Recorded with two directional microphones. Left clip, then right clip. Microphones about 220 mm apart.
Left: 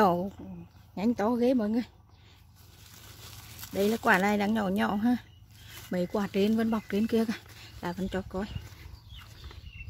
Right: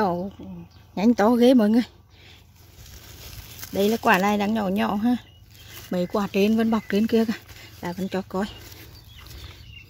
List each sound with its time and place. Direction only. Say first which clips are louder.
0.0 s a sound: even; 5° left (ahead or behind)
0.9 s speech: right 9 dB; 25° right (ahead or behind)
3.6 s speech: right 5 dB; 10° right (ahead or behind)